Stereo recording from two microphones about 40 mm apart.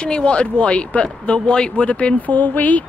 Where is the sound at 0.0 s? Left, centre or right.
Left.